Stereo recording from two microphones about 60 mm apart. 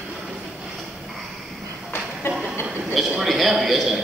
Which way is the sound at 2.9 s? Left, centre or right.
Centre.